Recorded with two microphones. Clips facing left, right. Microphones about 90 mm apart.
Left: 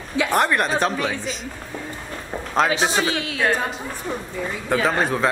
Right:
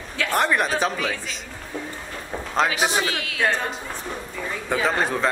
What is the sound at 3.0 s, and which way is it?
Speech, 25° left (ahead or behind).